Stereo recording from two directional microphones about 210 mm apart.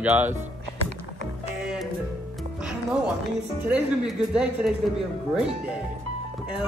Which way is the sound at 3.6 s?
5° right (ahead or behind).